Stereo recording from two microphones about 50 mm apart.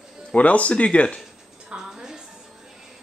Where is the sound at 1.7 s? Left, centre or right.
Centre.